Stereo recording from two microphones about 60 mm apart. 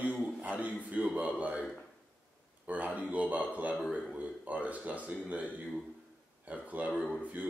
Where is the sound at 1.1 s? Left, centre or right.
Right.